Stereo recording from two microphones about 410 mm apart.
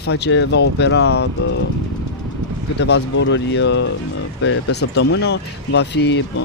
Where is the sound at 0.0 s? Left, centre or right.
Left.